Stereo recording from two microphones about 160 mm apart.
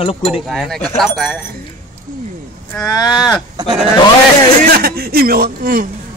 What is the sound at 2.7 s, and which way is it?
Speech, 25° left (ahead or behind).